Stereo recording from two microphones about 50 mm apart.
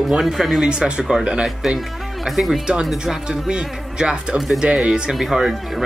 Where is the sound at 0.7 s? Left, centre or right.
Centre.